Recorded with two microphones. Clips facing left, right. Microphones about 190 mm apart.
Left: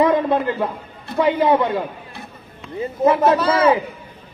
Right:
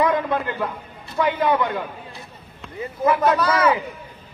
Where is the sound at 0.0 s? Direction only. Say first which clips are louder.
Left 4 dB; 25° left (ahead or behind).